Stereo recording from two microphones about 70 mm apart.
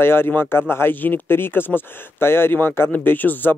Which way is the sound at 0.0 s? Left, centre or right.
Left.